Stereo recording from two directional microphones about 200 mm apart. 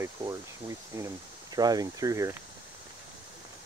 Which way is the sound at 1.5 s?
20° right (ahead or behind).